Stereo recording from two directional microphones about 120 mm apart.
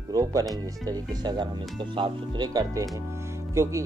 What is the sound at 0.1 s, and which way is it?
Speech, 30° right (ahead or behind).